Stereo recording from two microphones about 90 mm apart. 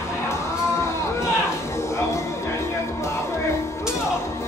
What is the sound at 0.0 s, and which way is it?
Music, 30° left (ahead or behind).